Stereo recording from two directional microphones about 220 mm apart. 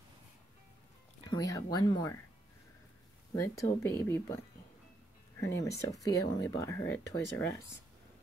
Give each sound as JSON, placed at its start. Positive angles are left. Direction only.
{"t": 1.3, "sound": "speech", "side_deg": 15}
{"t": 3.3, "sound": "speech", "side_deg": 15}
{"t": 5.5, "sound": "speech", "side_deg": 15}